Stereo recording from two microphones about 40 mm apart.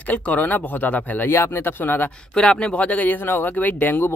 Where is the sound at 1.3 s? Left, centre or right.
Left.